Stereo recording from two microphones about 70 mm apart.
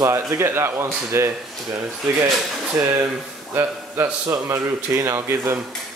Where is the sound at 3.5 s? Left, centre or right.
Right.